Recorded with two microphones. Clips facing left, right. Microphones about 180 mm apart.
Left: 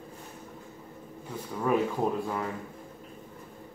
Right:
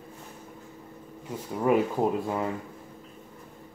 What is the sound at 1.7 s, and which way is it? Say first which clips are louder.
Speech: right 4 dB; 20° right (ahead or behind).